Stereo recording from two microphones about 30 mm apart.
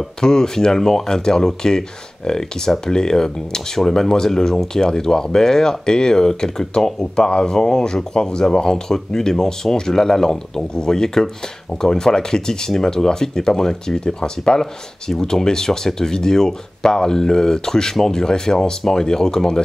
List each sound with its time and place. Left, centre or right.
0.2 s speech: left